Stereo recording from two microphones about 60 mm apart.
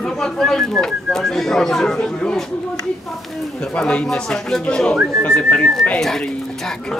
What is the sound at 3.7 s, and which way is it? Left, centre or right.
Speech, centre.